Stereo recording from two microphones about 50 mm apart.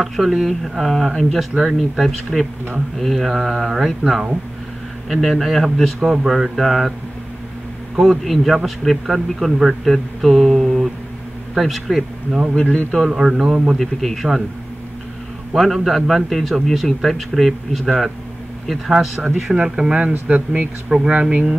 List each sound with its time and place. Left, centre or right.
0.0 s a man's voice: centre
8.0 s a man's voice: centre
9.8 s mantra: centre
11.5 s a man's voice: centre
12.5 s a man's voice: centre
13.1 s a man's voice: centre
15.5 s a man's voice: centre; by 20.6 s right
20.9 s speech: centre